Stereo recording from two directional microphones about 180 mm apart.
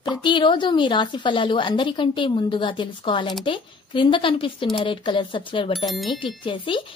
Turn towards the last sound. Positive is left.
turn(degrees=30)  # may be behind; listen again after turning